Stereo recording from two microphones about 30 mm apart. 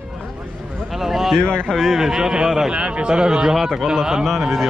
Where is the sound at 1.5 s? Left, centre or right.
Left.